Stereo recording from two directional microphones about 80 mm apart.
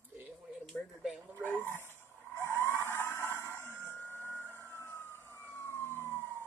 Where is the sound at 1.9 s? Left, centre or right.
Left.